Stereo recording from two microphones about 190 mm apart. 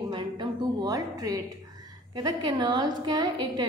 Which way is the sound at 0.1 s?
20° right (ahead or behind).